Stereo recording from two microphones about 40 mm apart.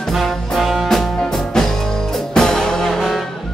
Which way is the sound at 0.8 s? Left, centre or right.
Centre.